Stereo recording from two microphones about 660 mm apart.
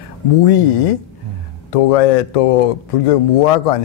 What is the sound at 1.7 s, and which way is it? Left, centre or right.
Speech, left.